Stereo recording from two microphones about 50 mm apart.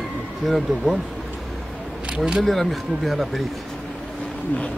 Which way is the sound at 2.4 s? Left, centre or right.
Centre.